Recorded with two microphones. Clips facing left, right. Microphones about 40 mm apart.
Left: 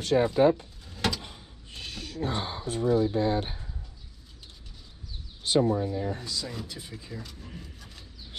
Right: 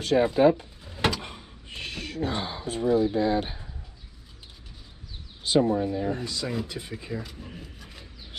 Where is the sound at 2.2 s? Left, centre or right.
Right.